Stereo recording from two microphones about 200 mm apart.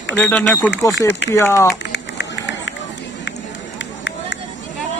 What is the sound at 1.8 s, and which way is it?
Run, 60° left (ahead or behind).